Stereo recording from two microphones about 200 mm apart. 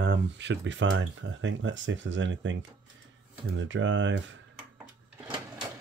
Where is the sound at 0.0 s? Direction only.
60° right (ahead or behind).